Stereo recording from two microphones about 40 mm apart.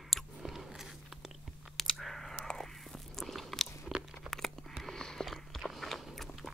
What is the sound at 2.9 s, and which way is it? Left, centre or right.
Biting, centre.